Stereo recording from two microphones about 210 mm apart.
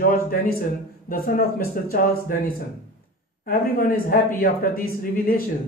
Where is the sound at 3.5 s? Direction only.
45° left (ahead or behind).